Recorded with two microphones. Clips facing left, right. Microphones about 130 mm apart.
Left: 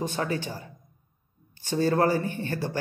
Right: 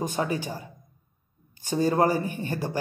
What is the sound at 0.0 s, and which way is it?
A man's voice, 15° right (ahead or behind).